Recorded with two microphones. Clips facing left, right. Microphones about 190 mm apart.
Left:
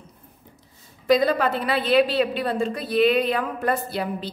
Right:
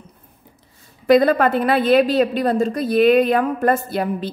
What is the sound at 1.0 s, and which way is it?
A woman's voice, 55° right (ahead or behind).